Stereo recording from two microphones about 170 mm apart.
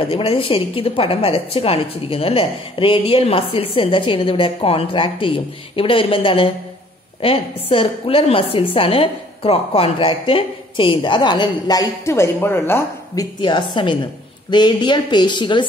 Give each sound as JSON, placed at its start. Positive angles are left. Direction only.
{"t": 0.0, "sound": "a woman's voice", "side_deg": 35}